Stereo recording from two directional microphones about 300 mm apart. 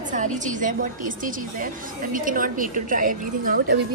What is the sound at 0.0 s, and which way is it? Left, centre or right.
A woman's voice, right.